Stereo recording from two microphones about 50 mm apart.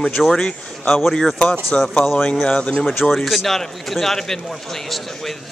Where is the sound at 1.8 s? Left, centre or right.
Centre.